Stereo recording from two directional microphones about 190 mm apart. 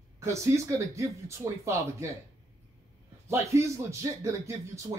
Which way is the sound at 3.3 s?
15° right (ahead or behind).